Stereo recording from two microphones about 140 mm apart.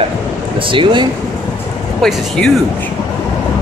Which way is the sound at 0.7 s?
35° right (ahead or behind).